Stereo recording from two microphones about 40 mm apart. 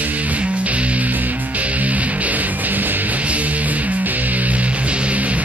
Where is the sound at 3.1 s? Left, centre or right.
Right.